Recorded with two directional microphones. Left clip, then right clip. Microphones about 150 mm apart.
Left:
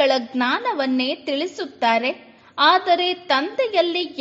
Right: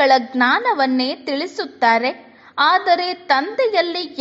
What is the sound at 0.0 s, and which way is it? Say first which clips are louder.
A woman's voice: right 5 dB; 30° right (ahead or behind).